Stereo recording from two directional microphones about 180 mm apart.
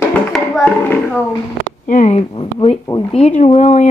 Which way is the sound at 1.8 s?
40° left (ahead or behind).